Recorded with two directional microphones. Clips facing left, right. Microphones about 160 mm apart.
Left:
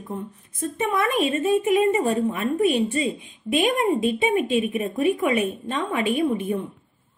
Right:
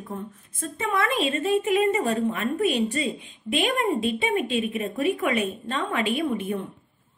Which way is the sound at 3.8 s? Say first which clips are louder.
Left 3 dB; 20° left (ahead or behind).